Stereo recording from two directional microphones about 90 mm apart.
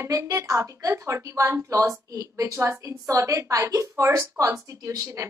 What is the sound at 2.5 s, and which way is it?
A woman's voice, 25° right (ahead or behind).